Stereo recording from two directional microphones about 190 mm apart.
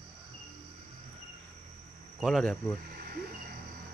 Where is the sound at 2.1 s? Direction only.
Centre (ahead or behind).